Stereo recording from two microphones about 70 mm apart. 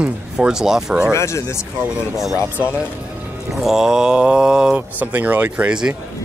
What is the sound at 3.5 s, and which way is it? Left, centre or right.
Speech, centre.